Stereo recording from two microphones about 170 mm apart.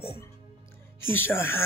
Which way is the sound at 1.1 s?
15° left (ahead or behind).